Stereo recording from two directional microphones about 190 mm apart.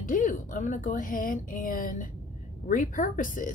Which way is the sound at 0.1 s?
45° left (ahead or behind).